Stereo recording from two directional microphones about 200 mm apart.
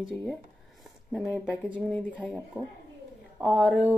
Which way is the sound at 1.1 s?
Centre (ahead or behind).